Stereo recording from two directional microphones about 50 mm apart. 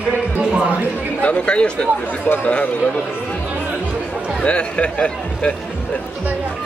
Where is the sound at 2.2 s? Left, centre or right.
Left.